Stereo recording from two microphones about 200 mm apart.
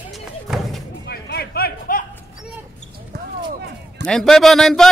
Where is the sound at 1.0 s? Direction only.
55° left (ahead or behind).